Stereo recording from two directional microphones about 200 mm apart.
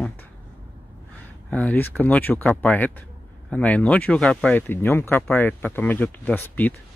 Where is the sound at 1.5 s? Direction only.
10° left (ahead or behind).